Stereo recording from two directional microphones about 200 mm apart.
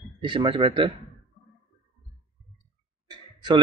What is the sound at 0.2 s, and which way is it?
Speech, 25° right (ahead or behind).